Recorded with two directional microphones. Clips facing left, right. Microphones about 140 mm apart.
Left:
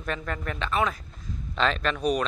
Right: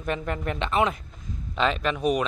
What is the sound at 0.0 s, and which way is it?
Speech, 20° right (ahead or behind).